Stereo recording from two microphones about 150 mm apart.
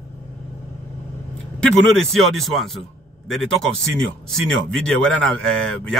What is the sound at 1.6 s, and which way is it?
Speech, 5° left (ahead or behind).